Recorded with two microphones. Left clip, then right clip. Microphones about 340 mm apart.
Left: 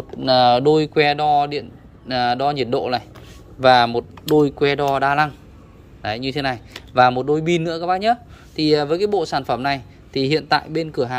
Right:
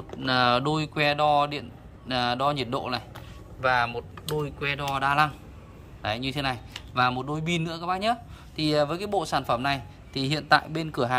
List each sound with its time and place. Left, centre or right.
0.2 s speech: centre
3.6 s speech: centre